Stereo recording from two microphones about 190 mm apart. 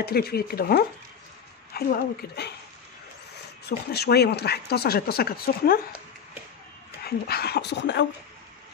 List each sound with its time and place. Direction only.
0.0 s speech: 55° left (ahead or behind)
3.6 s speech: 60° left (ahead or behind)
7.1 s speech: 55° left (ahead or behind)